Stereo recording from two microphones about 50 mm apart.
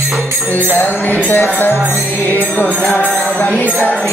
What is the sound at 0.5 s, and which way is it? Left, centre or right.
Music, left.